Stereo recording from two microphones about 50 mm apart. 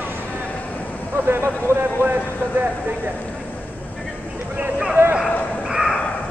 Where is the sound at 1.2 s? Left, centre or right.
Right.